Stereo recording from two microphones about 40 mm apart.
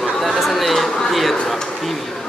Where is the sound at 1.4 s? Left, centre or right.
Centre.